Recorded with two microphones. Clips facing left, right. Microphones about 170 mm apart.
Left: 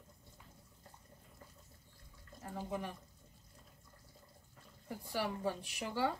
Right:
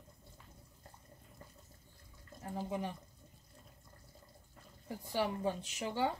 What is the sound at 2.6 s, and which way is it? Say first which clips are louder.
Speech: right 2 dB; 20° right (ahead or behind).